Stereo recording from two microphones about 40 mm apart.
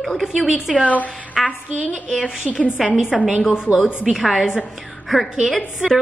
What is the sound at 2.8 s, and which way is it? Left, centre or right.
A woman's voice, centre.